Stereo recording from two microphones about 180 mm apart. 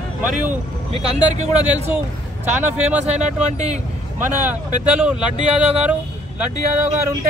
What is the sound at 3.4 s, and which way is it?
Speech, 40° right (ahead or behind).